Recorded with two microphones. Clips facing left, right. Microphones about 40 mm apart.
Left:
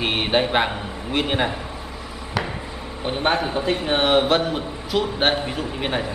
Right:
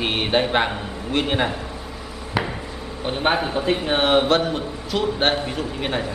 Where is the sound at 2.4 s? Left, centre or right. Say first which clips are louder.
Right 2 dB; centre.